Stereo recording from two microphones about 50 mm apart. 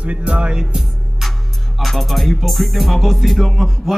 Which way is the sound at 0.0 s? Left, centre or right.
Right.